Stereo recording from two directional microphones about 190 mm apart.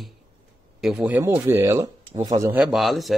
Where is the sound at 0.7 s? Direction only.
Centre (ahead or behind).